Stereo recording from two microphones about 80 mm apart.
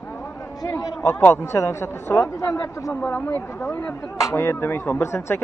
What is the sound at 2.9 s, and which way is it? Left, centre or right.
Speech, centre.